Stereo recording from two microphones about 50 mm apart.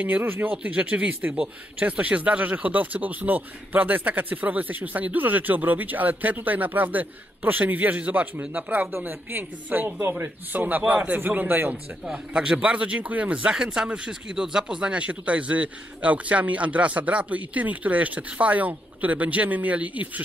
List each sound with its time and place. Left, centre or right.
0.2 s speech: right
0.5 s speech: right
8.9 s speech: right
12.1 s speech: centre
13.6 s speech: centre; by 20.1 s right